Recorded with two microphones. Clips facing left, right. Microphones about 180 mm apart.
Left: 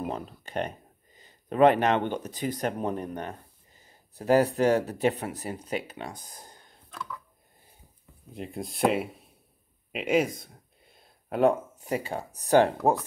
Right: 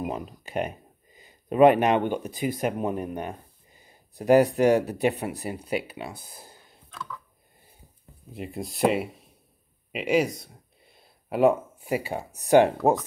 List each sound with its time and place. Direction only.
0.0 s speech: 10° right (ahead or behind)
8.3 s speech: 5° right (ahead or behind)